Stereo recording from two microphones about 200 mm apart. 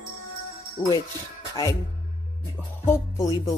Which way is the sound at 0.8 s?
25° left (ahead or behind).